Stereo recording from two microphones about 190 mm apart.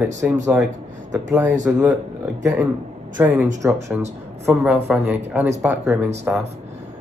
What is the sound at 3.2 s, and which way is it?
A man's voice, 10° right (ahead or behind).